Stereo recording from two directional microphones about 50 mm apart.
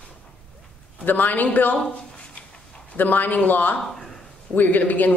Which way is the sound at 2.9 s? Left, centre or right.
Left.